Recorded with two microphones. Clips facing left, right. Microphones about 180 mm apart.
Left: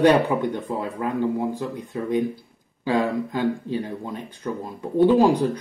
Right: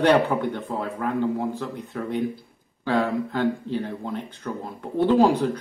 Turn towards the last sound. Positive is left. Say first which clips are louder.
# left 1 dB
turn(degrees=15)  # may be behind; listen again after turning